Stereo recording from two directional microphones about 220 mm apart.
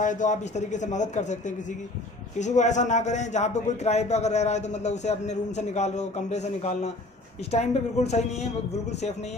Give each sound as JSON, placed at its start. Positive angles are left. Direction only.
{"t": 0.0, "sound": "a man's voice", "side_deg": 35}